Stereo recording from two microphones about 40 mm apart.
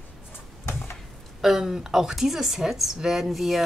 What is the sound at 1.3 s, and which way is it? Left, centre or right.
A woman's voice, centre.